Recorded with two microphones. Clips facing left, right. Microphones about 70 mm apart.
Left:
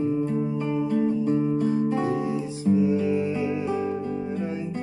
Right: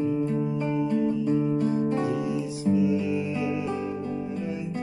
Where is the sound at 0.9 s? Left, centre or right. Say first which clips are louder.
Left 3 dB; left.